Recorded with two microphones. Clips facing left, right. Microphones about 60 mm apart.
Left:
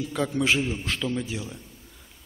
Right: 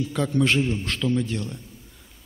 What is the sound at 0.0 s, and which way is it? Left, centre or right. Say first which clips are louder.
A man's voice: right 3 dB; centre.